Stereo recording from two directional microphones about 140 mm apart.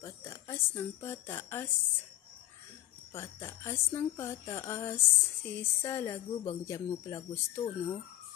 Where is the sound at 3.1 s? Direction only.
20° left (ahead or behind).